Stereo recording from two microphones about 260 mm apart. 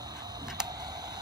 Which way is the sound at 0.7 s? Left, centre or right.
Centre.